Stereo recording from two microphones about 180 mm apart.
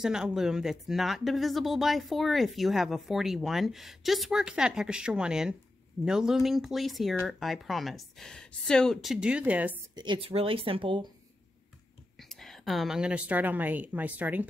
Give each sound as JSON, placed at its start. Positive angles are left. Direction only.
{"t": 0.0, "sound": "speech", "side_deg": -5}
{"t": 9.9, "sound": "speech", "side_deg": -25}
{"t": 12.2, "sound": "a woman's voice", "side_deg": 0}